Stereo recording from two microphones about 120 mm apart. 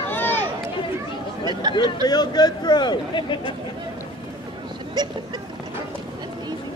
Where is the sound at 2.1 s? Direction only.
35° left (ahead or behind).